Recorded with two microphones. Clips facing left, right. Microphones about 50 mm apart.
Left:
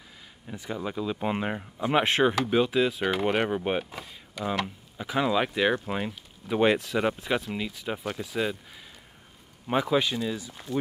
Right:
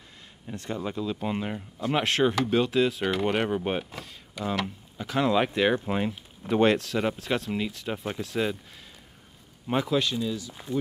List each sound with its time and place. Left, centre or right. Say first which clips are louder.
0.5 s speech: right 1 dB; centre
2.3 s speech: even; centre
5.3 s speech: right 2 dB; centre
6.5 s speech: right 1 dB; centre
9.7 s speech: left 1 dB; centre